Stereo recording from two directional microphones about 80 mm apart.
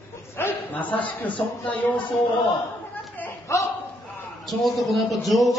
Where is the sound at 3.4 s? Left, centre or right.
Left.